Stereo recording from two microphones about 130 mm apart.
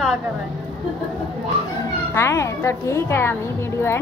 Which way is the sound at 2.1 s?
20° left (ahead or behind).